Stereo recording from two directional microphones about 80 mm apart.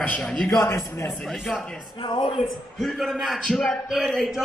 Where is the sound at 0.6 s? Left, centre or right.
Left.